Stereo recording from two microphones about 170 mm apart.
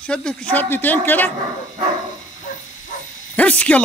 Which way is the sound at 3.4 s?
10° left (ahead or behind).